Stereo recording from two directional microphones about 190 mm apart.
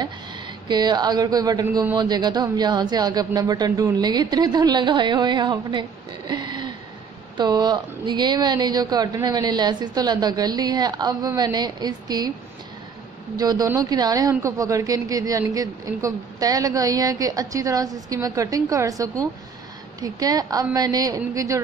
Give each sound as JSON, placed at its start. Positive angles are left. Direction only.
{"t": 0.7, "sound": "speech", "side_deg": -20}
{"t": 13.4, "sound": "a woman's voice", "side_deg": -20}